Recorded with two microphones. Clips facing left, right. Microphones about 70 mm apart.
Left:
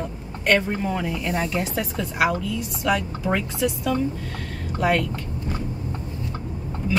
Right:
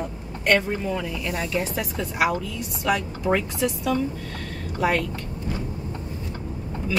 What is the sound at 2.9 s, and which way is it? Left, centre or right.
Speech, centre.